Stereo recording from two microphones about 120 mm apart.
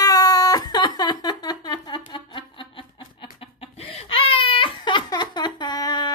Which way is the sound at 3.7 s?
55° left (ahead or behind).